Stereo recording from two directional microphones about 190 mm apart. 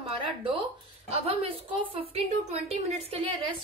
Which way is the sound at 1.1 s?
30° right (ahead or behind).